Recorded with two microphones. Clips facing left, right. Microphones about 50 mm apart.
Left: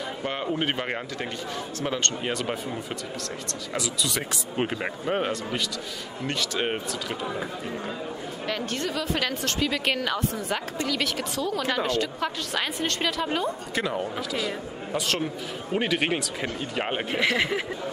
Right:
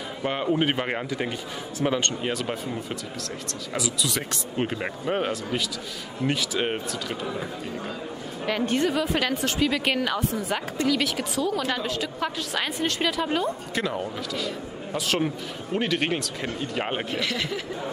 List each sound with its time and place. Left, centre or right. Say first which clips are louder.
0.2 s a woman's voice: right 5 dB; centre
2.2 s a woman's voice: even; centre
8.5 s a woman's voice: right 6 dB; centre
17.1 s speech: left 4 dB; left